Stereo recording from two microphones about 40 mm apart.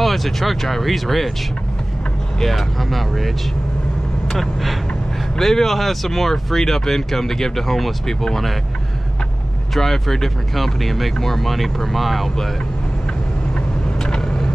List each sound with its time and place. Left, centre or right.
0.0 s speech: centre
2.4 s speech: centre
4.3 s speech: centre
9.8 s speech: centre
14.1 s vehicle: centre